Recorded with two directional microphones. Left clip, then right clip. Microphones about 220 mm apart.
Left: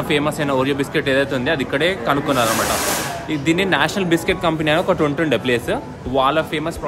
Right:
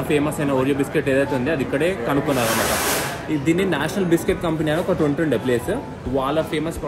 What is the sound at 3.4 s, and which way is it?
Speech, 5° left (ahead or behind).